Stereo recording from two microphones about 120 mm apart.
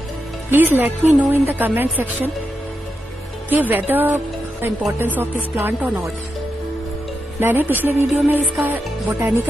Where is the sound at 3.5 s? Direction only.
15° right (ahead or behind).